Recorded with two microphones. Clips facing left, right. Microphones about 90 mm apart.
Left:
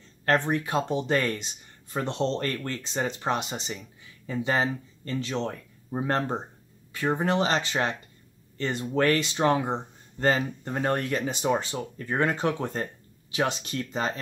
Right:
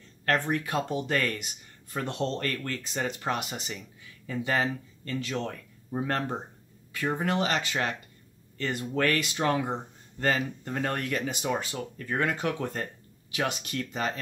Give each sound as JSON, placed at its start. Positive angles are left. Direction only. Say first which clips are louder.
{"t": 0.2, "sound": "speech", "louder": "left 3 dB", "side_deg": 25}